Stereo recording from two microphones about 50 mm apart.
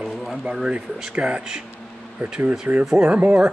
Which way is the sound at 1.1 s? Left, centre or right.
Right.